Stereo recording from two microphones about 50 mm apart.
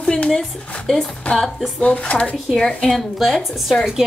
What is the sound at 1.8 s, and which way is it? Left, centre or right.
Speech, left.